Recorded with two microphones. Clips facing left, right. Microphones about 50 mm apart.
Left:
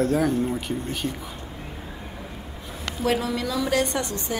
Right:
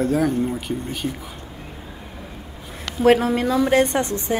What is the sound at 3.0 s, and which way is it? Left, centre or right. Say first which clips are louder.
A woman's voice: right 8 dB; right.